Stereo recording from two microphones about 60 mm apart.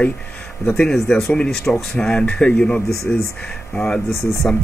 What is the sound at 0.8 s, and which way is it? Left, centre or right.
Speech, centre.